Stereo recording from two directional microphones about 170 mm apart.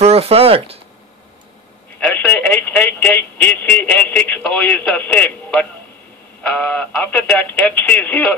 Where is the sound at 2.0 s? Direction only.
10° left (ahead or behind).